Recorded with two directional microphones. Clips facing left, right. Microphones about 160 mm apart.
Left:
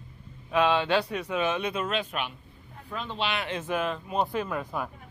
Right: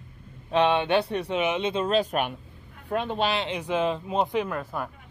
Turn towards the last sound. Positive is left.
turn(degrees=0)  # may be behind; listen again after turning